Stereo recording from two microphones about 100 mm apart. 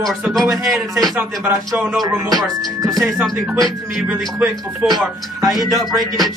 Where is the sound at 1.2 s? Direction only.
15° right (ahead or behind).